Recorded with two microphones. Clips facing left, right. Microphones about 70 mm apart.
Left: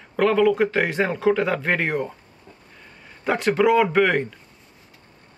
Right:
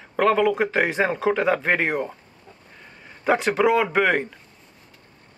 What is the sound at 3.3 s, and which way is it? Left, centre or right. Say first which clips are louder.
Speech: even; centre.